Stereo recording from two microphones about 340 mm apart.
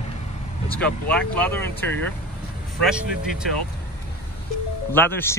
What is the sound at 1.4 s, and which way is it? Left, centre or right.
Speech, centre.